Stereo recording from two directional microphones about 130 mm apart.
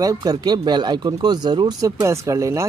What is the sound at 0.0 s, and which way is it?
Speech, 30° right (ahead or behind).